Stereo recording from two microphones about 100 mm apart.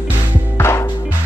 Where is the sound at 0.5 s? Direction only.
25° left (ahead or behind).